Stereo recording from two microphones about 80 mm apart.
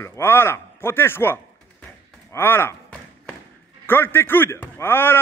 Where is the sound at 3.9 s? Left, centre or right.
Left.